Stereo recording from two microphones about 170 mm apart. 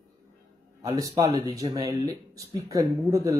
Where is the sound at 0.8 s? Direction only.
20° right (ahead or behind).